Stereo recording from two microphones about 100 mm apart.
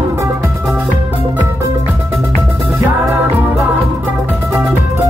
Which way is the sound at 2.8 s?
15° right (ahead or behind).